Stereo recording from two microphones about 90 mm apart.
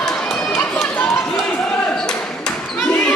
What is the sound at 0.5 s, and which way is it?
Run, 25° left (ahead or behind).